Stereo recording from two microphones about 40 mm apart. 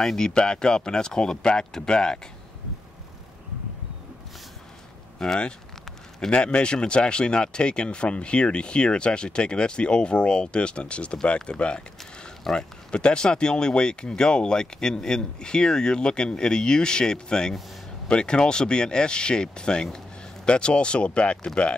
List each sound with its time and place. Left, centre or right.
0.0 s speech: centre
5.2 s speech: centre
6.3 s speech: left